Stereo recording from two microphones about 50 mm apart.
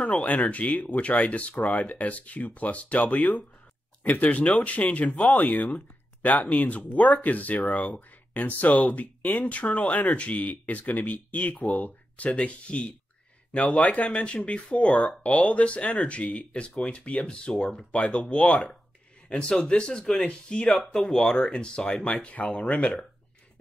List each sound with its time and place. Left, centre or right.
0.2 s speech: left
20.9 s speech: centre